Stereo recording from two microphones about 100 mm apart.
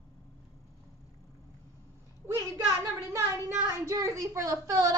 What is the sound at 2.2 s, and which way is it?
A woman's voice, 25° right (ahead or behind).